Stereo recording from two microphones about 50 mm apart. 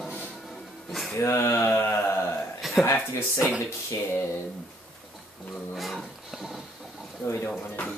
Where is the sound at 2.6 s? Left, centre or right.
Centre.